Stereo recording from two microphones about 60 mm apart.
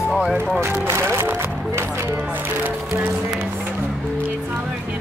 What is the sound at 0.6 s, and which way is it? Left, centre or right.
Speech, right.